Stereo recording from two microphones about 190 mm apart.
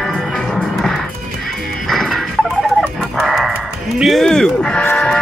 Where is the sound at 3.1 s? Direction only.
Centre (ahead or behind).